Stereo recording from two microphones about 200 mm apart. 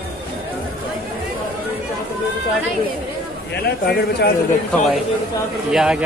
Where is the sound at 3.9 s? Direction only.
50° left (ahead or behind).